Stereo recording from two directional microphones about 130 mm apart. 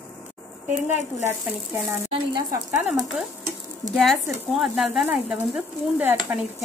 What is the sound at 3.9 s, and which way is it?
Speech, centre (ahead or behind).